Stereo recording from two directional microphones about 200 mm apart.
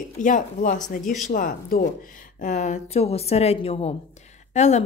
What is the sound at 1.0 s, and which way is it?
Speech, centre (ahead or behind).